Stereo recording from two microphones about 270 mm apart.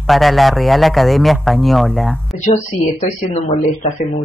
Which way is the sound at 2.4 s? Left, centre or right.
Left.